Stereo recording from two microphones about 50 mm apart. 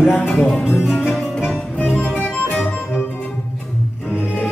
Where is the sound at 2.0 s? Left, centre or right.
Left.